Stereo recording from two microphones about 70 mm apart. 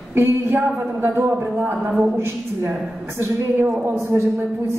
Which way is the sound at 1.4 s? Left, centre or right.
Right.